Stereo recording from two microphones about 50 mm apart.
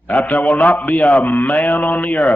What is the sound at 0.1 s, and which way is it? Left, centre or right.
A man's voice, left.